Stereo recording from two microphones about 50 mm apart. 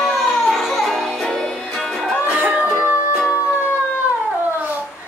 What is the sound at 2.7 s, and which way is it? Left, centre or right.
Music, right.